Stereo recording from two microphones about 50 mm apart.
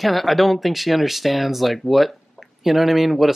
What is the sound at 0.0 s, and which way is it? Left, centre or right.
Speech, centre.